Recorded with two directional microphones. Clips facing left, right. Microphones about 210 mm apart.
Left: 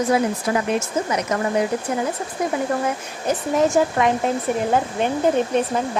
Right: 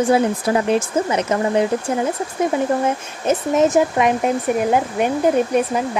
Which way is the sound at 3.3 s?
20° right (ahead or behind).